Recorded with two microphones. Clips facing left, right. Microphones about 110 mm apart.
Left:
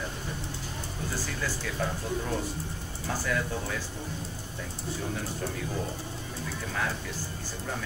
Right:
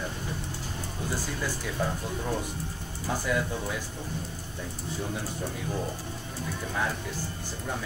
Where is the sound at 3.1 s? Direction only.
15° right (ahead or behind).